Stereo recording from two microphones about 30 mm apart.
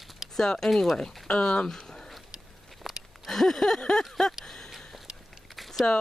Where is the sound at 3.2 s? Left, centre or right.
Centre.